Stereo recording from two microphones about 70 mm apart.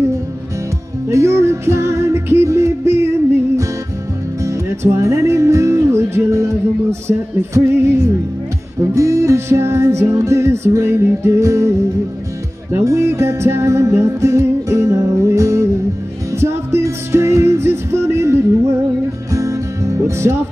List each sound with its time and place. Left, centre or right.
1.0 s music: right
4.4 s music: right
12.8 s music: right
16.3 s music: right
19.3 s music: right